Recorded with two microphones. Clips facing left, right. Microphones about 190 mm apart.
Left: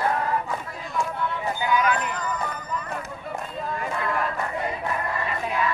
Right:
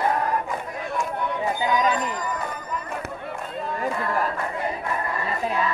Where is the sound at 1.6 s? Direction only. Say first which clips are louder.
Even; 20° right (ahead or behind).